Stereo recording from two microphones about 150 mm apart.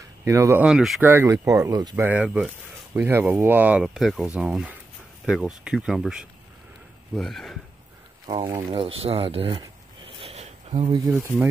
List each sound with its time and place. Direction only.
0.2 s speech: 20° right (ahead or behind)
0.7 s speech: 5° right (ahead or behind)
1.0 s speech: 15° right (ahead or behind)
2.0 s speech: 10° right (ahead or behind)
8.6 s speech: 35° right (ahead or behind)
9.6 s a sound: 35° right (ahead or behind)
11.1 s speech: 10° right (ahead or behind)